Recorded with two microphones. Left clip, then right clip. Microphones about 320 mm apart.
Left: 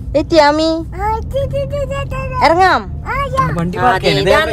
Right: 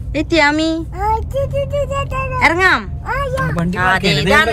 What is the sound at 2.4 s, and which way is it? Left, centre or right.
Speech, centre.